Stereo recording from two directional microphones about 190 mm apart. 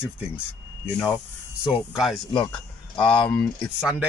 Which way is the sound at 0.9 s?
5° left (ahead or behind).